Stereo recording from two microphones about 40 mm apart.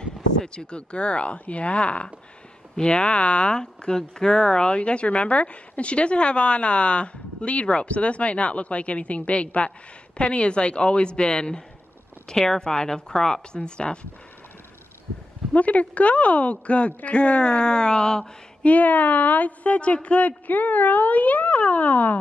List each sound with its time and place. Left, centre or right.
0.0 s speech: left
12.3 s speech: centre
15.5 s a woman's voice: left; by 18.3 s centre
18.6 s a woman's voice: left